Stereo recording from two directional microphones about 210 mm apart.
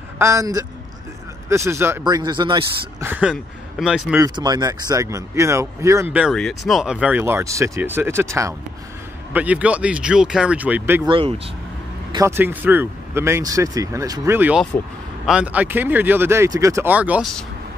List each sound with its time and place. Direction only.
0.2 s speech: 15° right (ahead or behind)
3.0 s speech: 5° right (ahead or behind)
4.2 s speech: 20° right (ahead or behind)
6.1 s speech: centre (ahead or behind)
11.1 s speech: 25° right (ahead or behind)
12.1 s speech: 15° right (ahead or behind); by 17.5 s centre (ahead or behind)